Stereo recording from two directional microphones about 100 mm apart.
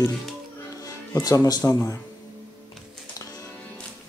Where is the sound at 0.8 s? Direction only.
35° left (ahead or behind).